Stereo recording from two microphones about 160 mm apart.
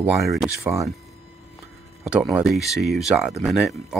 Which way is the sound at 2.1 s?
5° right (ahead or behind).